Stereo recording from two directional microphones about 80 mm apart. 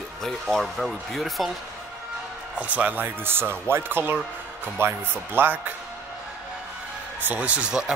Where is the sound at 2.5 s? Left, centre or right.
Centre.